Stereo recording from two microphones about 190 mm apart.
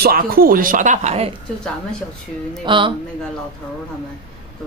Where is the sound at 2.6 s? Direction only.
25° right (ahead or behind).